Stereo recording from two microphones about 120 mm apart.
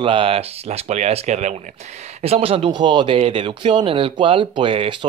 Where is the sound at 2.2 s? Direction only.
55° right (ahead or behind).